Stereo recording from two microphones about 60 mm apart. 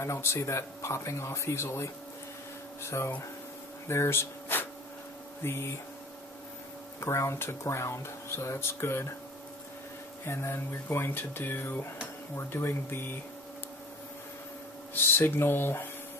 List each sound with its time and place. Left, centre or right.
0.0 s speech: left
3.8 s a sound: left
5.4 s speech: left
7.0 s speech: left
10.2 s speech: left
15.1 s speech: left